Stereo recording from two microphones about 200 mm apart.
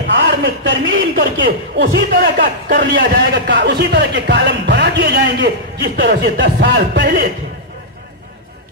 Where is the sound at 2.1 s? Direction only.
45° right (ahead or behind).